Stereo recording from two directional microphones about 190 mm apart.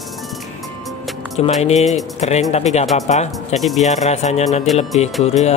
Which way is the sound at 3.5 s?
Centre (ahead or behind).